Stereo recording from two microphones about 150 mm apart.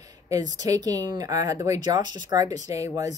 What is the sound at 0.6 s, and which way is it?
A woman's voice, 25° right (ahead or behind).